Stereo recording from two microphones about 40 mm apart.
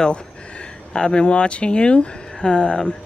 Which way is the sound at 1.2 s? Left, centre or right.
Left.